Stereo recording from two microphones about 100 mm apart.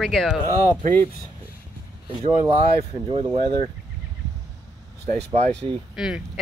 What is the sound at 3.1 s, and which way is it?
Speech, 70° right (ahead or behind).